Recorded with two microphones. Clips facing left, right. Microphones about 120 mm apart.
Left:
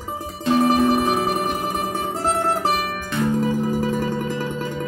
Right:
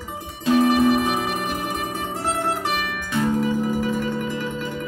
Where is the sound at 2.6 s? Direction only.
35° left (ahead or behind).